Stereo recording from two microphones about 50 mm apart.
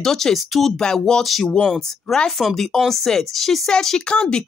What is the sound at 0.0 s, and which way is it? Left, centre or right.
Speech, centre.